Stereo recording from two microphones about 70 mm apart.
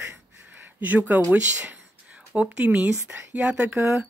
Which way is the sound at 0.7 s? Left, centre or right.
Right.